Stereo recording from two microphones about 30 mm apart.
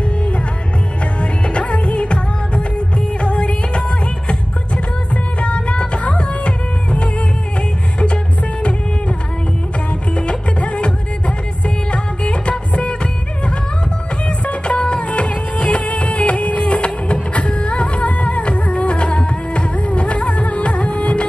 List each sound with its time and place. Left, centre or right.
1.2 s music: left
5.1 s music: left
10.1 s music: left
14.6 s music: left